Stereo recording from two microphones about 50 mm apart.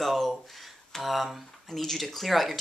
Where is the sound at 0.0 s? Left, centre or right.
Centre.